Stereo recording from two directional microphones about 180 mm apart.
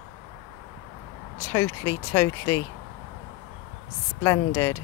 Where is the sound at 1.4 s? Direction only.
15° left (ahead or behind).